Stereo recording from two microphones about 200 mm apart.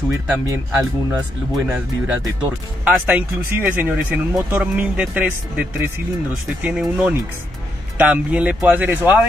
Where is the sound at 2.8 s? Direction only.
5° right (ahead or behind).